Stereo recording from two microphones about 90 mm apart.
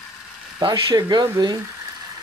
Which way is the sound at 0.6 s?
60° right (ahead or behind).